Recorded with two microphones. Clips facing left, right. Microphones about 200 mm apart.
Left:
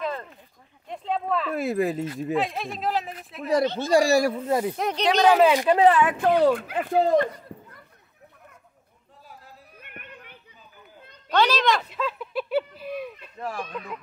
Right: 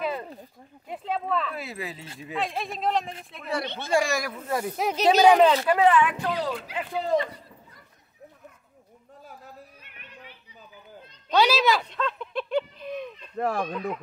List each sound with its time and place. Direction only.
0.0 s a sound: 10° right (ahead or behind)
0.8 s speech: 5° right (ahead or behind)
1.5 s a man's voice: 50° left (ahead or behind)
2.3 s speech: centre (ahead or behind)
3.6 s speech: 60° right (ahead or behind)
3.9 s speech: 35° left (ahead or behind)
4.7 s speech: 5° right (ahead or behind)
5.8 s a man's voice: 40° left (ahead or behind); by 7.8 s 55° left (ahead or behind)
9.8 s music: 55° left (ahead or behind)
11.3 s speech: 10° right (ahead or behind)
11.8 s fowl: 5° left (ahead or behind)
13.4 s speech: 60° right (ahead or behind)